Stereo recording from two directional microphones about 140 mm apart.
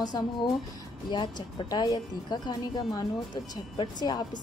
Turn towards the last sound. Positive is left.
turn(degrees=30)  # may be behind; listen again after turning